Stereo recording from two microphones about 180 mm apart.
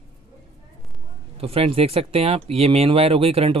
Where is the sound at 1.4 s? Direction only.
30° right (ahead or behind).